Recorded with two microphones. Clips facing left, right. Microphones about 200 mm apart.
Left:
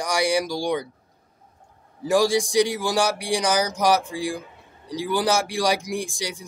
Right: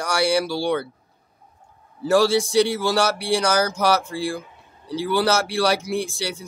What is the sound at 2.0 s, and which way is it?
Speech, 15° left (ahead or behind).